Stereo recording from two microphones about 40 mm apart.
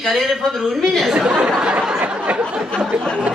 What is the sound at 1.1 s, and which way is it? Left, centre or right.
Speech, right.